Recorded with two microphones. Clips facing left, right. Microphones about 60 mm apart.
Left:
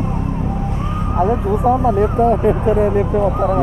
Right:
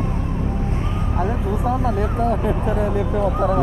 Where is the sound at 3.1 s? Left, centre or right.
Left.